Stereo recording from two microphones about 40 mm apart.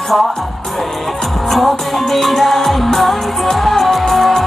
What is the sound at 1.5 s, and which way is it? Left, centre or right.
Music, centre.